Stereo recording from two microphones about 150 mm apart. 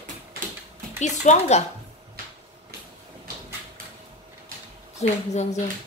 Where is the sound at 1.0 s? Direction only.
50° left (ahead or behind).